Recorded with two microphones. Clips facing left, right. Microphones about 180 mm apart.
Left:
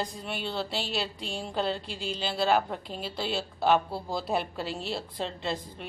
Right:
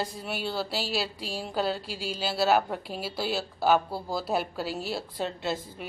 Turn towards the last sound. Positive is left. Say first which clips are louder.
# right 2 dB
turn(degrees=-5)  # may be behind; listen again after turning